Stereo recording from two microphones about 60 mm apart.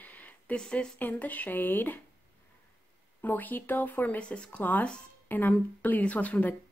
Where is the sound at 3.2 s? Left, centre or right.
Left.